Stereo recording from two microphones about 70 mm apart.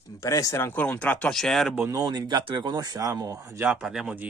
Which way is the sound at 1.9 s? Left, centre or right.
Right.